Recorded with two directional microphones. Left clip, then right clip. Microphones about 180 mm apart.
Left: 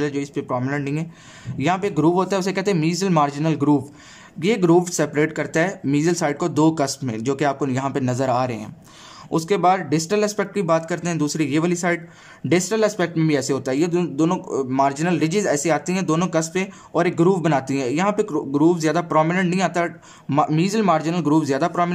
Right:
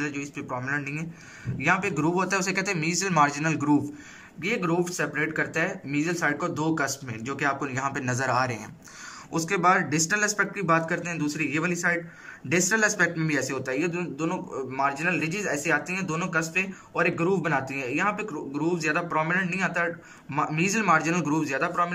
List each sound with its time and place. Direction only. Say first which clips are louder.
0.0 s speech: left 8 dB; 30° left (ahead or behind)